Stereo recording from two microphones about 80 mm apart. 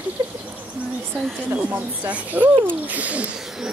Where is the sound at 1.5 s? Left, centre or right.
Right.